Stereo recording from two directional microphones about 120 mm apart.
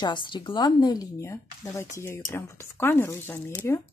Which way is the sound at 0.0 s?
40° left (ahead or behind).